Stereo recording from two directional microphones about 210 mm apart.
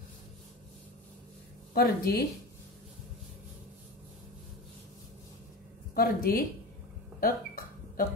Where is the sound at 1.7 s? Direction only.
45° left (ahead or behind).